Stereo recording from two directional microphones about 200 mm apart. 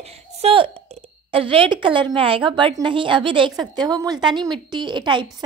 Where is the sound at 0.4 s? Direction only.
25° right (ahead or behind).